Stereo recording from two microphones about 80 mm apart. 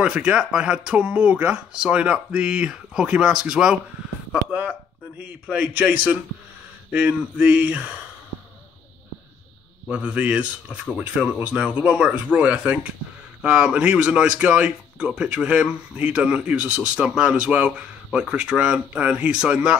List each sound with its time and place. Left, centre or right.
0.0 s speech: centre
9.8 s speech: centre